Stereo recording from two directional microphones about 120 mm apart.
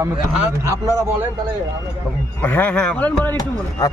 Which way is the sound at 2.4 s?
15° left (ahead or behind).